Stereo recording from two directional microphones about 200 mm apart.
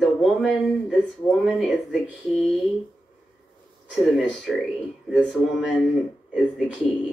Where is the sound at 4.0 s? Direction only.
Centre (ahead or behind).